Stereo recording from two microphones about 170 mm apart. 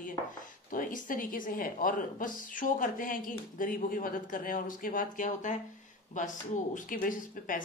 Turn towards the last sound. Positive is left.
turn(degrees=50)  # may be behind; listen again after turning